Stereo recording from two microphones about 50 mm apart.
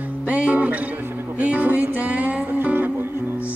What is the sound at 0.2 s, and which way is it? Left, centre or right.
Music, right.